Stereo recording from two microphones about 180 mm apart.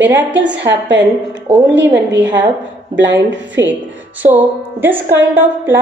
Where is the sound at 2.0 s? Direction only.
80° right.